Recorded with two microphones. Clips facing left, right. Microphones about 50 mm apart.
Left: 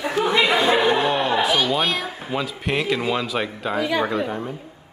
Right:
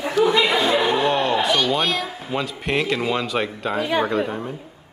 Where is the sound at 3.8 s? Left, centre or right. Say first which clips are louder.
Even; right.